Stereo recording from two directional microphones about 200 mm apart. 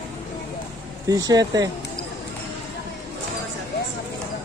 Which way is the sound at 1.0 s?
20° right (ahead or behind).